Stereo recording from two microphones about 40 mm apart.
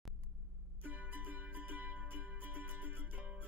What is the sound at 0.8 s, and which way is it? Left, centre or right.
Music, right.